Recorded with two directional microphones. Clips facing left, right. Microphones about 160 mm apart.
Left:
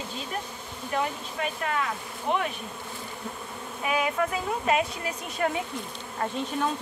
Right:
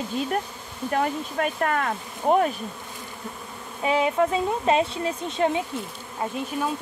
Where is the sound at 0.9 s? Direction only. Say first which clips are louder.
Right 5 dB; 50° right (ahead or behind).